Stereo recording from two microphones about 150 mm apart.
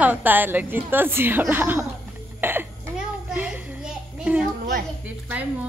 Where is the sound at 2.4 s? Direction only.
15° right (ahead or behind).